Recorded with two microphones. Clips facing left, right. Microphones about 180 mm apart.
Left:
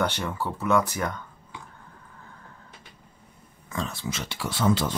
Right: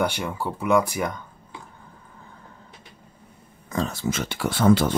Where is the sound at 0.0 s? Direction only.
10° right (ahead or behind).